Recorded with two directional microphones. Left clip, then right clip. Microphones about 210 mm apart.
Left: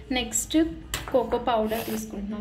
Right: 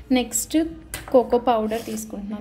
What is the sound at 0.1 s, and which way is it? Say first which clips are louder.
Speech: right 4 dB; 45° right (ahead or behind).